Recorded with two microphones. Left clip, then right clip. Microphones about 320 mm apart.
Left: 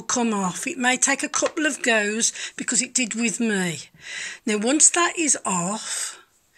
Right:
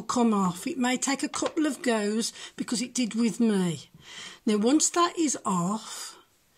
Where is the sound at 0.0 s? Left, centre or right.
Centre.